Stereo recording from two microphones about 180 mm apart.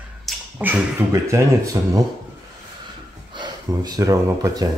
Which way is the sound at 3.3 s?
25° right (ahead or behind).